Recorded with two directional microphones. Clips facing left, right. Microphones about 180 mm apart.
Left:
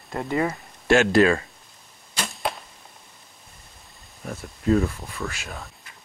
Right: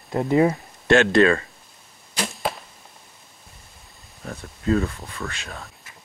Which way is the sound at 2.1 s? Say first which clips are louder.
Right 2 dB; centre (ahead or behind).